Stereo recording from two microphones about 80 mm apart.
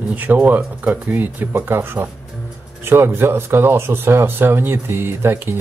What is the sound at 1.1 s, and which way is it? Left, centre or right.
Speech, right.